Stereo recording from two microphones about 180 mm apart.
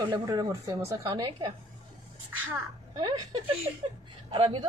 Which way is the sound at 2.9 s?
25° right (ahead or behind).